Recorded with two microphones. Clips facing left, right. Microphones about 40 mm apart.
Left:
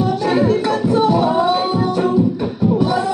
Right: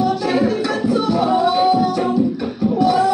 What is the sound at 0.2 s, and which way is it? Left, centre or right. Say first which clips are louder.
Music: left 2 dB; centre.